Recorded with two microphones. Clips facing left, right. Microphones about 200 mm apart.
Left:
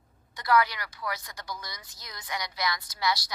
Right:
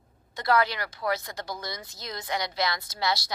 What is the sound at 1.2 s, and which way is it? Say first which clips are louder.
Speech: right 5 dB; 25° right (ahead or behind).